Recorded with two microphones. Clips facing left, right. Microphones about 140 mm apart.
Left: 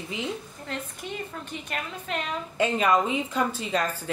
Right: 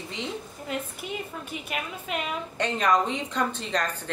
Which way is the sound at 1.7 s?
10° right (ahead or behind).